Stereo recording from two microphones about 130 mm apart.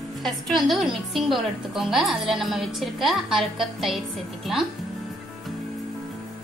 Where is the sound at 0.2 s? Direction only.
Centre (ahead or behind).